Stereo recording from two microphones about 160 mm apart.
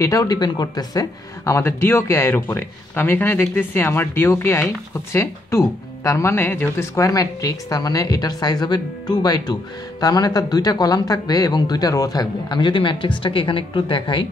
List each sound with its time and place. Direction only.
0.0 s a woman's voice: 20° left (ahead or behind)